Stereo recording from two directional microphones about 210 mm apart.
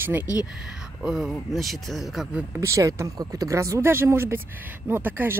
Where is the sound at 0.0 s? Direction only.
10° right (ahead or behind).